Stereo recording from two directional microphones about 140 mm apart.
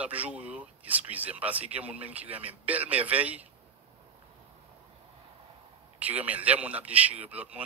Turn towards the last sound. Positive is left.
turn(degrees=-10)  # may be behind; listen again after turning